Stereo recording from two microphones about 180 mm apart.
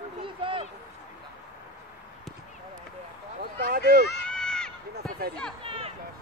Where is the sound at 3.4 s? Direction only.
55° right (ahead or behind).